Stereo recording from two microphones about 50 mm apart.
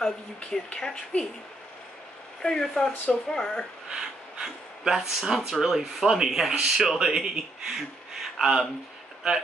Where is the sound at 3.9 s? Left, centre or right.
Centre.